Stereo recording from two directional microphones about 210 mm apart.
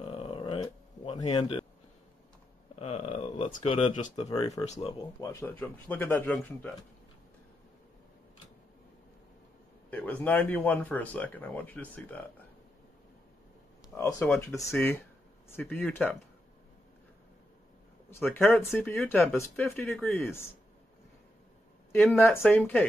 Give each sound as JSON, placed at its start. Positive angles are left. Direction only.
{"t": 0.0, "sound": "a sound", "side_deg": 25}
{"t": 1.3, "sound": "a man's voice", "side_deg": 20}
{"t": 2.7, "sound": "speech", "side_deg": 30}
{"t": 4.3, "sound": "speech", "side_deg": 15}
{"t": 4.6, "sound": "speech", "side_deg": 30}
{"t": 5.2, "sound": "speech", "side_deg": 10}
{"t": 9.8, "sound": "speech", "side_deg": 10}
{"t": 13.9, "sound": "speech", "side_deg": 15}
{"t": 18.1, "sound": "speech", "side_deg": 10}
{"t": 21.9, "sound": "speech", "side_deg": 5}